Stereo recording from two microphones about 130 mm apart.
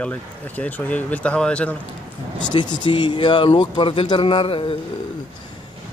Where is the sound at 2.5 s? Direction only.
35° left (ahead or behind).